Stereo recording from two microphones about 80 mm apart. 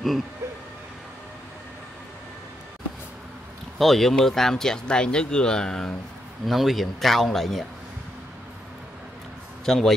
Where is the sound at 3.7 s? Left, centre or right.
Centre.